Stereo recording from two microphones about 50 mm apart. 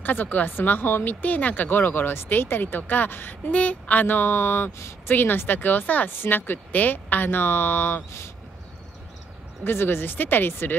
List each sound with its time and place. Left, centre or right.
0.0 s speech: left
1.2 s speech: left
3.5 s speech: left
9.7 s speech: left